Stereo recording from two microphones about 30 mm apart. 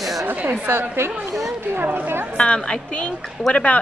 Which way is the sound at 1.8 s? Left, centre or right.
Right.